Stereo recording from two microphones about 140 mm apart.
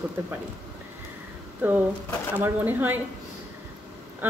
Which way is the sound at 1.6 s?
15° right (ahead or behind).